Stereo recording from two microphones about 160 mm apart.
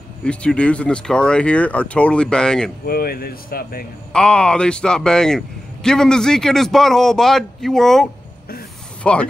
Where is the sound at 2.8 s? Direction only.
70° left (ahead or behind).